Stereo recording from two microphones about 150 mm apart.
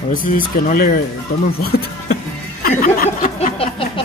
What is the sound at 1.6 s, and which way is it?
Speech, 90° left.